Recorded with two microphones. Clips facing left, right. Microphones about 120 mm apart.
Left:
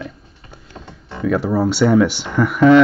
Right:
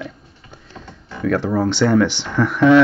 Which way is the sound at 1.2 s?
5° left (ahead or behind).